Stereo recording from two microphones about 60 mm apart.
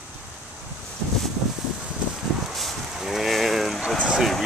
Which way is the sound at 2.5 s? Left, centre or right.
Centre.